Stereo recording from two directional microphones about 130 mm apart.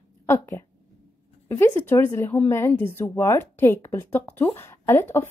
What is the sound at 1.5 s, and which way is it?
Speech, 20° left (ahead or behind).